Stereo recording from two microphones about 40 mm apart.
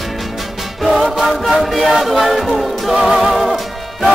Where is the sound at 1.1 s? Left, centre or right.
Centre.